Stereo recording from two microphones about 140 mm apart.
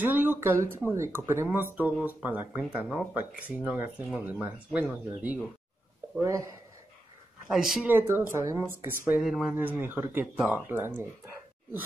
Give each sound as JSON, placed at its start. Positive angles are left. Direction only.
{"t": 0.0, "sound": "speech", "side_deg": -15}
{"t": 6.2, "sound": "speech", "side_deg": -25}
{"t": 7.4, "sound": "speech", "side_deg": -5}
{"t": 7.9, "sound": "speech", "side_deg": -15}
{"t": 9.2, "sound": "speech", "side_deg": 0}
{"t": 9.6, "sound": "speech", "side_deg": -15}